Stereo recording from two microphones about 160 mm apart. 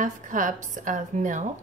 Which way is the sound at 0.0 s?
50° right (ahead or behind).